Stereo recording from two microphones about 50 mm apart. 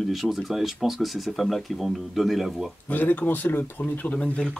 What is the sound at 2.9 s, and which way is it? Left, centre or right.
Speech, left.